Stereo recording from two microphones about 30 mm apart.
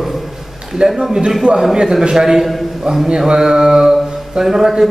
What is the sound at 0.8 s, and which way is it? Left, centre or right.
Speech, right.